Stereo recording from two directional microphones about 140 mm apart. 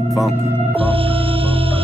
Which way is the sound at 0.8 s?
40° right (ahead or behind).